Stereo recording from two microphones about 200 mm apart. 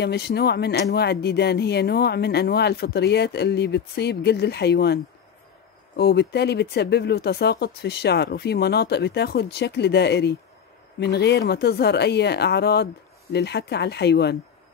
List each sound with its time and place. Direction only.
0.0 s speech: 55° left (ahead or behind)